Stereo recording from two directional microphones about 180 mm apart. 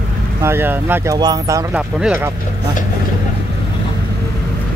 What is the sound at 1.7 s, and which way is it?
Speech, 5° right (ahead or behind).